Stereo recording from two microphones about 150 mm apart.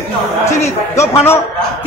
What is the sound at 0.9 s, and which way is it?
Speech, 20° left (ahead or behind).